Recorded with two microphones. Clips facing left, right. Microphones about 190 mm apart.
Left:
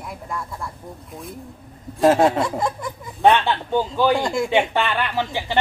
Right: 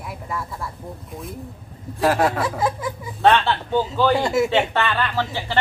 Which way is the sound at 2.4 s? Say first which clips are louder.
Even; 5° right (ahead or behind).